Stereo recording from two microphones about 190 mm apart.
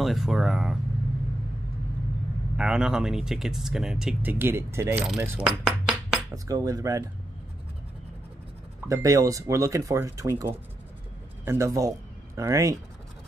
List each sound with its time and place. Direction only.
0.0 s speech: centre (ahead or behind)
2.5 s speech: 5° right (ahead or behind)
6.3 s speech: 20° right (ahead or behind)
8.8 s speech: 15° right (ahead or behind)